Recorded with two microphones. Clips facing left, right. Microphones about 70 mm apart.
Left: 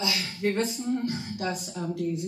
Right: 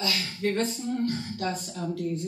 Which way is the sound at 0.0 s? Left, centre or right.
Centre.